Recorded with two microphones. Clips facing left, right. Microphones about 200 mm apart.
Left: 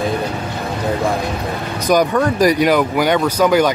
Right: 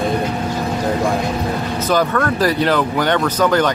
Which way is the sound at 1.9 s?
15° left (ahead or behind).